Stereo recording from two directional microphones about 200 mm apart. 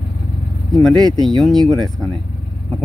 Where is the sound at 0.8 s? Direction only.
Centre (ahead or behind).